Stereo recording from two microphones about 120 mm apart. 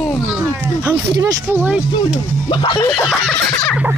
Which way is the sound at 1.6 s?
10° right (ahead or behind).